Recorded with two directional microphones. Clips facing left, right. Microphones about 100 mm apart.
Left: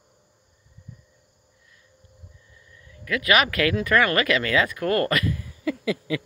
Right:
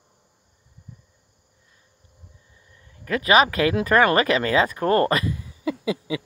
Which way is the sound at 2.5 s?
30° right (ahead or behind).